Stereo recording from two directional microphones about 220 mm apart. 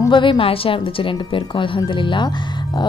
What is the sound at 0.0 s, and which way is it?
Speech, 20° left (ahead or behind).